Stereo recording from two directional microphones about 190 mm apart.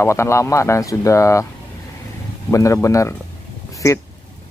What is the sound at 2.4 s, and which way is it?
Speech, 15° left (ahead or behind).